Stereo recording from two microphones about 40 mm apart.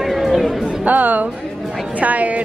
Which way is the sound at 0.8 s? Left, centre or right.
Right.